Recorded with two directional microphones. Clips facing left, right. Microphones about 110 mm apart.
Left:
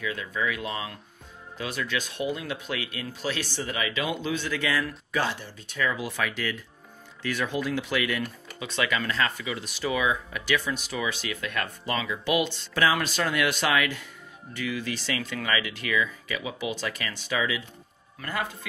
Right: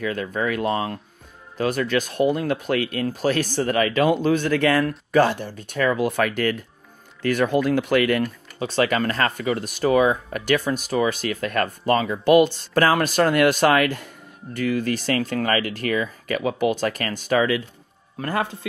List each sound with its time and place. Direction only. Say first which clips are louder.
0.0 s speech: right 5 dB; 50° right (ahead or behind)
8.2 s speech: right 8 dB; 40° right (ahead or behind)
18.2 s a man's voice: right 7 dB; 35° right (ahead or behind)